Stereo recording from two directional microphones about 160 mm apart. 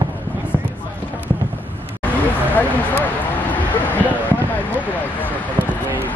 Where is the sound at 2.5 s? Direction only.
10° left (ahead or behind).